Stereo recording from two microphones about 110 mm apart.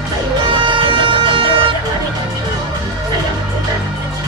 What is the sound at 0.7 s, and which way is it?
Music, 50° right (ahead or behind).